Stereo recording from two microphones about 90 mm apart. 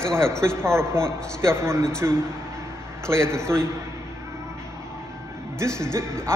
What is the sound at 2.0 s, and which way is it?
A woman's voice, 35° right (ahead or behind).